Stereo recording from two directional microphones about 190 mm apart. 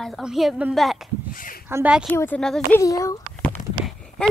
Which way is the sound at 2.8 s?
15° left (ahead or behind).